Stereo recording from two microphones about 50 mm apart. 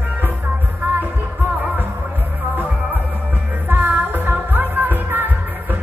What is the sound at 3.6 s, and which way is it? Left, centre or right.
Music, right.